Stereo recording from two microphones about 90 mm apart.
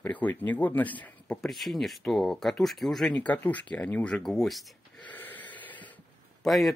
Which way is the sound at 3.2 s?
15° left (ahead or behind).